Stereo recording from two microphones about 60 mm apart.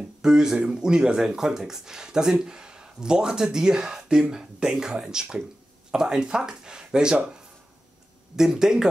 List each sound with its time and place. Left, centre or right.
0.2 s speech: centre
8.4 s speech: centre